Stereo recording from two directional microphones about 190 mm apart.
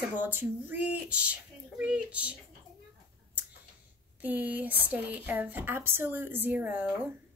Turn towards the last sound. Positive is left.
turn(degrees=-10)  # may be behind; listen again after turning